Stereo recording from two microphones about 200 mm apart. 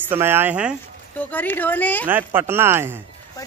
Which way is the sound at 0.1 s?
10° right (ahead or behind).